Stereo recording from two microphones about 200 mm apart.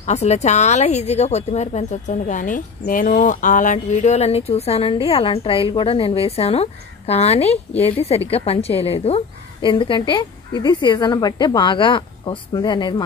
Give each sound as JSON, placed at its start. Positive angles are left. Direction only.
{"t": 0.0, "sound": "a woman's voice", "side_deg": 35}